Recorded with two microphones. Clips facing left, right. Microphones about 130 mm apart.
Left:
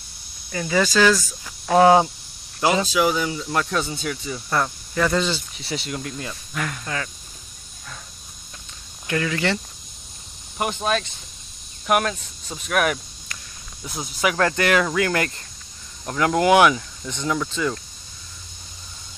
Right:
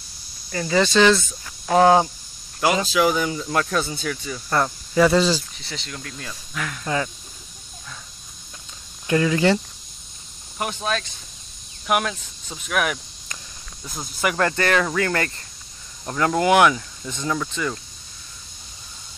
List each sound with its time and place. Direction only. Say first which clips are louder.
0.5 s speech: right 1 dB; 5° left (ahead or behind)
3.9 s speech: even; 20° left (ahead or behind)
4.5 s speech: right 2 dB; 5° right (ahead or behind)
5.6 s speech: left 6 dB; 10° left (ahead or behind)
6.5 s speech: left 1 dB; centre (ahead or behind)
9.0 s speech: right 5 dB; 20° right (ahead or behind)
10.8 s speech: left 3 dB; 5° left (ahead or behind)
16.3 s speech: left 1 dB; 15° left (ahead or behind)
16.7 s speech: left 1 dB; 5° right (ahead or behind)